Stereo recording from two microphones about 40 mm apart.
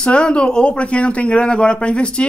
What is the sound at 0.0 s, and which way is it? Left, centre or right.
Speech, left.